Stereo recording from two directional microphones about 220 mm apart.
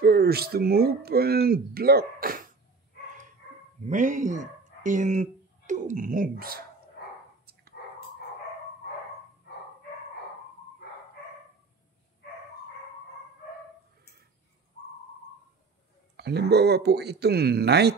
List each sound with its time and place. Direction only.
0.0 s speech: 45° right (ahead or behind)
3.8 s speech: 35° right (ahead or behind)
16.2 s speech: 50° right (ahead or behind)